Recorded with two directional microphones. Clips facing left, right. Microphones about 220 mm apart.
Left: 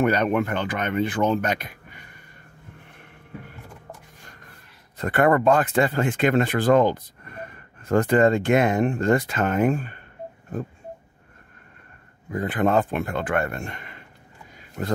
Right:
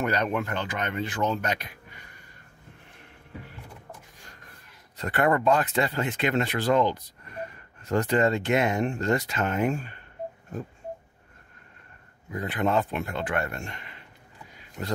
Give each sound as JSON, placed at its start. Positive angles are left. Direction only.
{"t": 0.0, "sound": "speech", "side_deg": 55}
{"t": 4.9, "sound": "speech", "side_deg": 50}
{"t": 12.3, "sound": "speech", "side_deg": 50}